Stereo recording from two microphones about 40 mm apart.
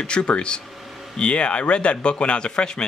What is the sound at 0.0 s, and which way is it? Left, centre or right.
Speech, left.